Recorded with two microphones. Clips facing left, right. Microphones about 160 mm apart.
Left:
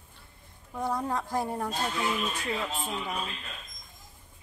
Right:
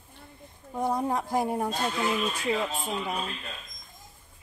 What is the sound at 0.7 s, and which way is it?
Speech, 20° right (ahead or behind).